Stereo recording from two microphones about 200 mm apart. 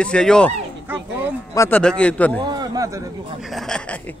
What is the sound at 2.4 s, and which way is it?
A man's voice, 20° right (ahead or behind).